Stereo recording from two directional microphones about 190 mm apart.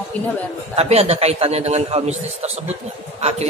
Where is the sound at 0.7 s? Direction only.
30° right (ahead or behind).